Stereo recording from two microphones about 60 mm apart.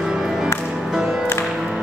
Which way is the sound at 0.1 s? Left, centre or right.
Centre.